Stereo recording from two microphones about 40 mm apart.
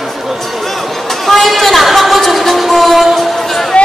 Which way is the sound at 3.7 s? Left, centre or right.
Left.